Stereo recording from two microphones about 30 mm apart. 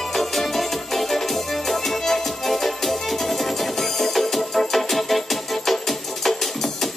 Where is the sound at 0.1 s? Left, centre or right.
Centre.